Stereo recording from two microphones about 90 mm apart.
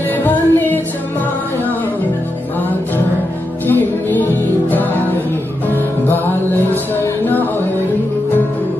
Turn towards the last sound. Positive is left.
turn(degrees=20)  # may be behind; listen again after turning